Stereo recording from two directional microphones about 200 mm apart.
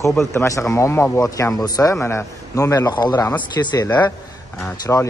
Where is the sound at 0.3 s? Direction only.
15° left (ahead or behind).